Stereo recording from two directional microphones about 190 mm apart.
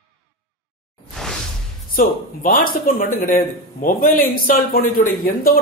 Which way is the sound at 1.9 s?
50° left (ahead or behind).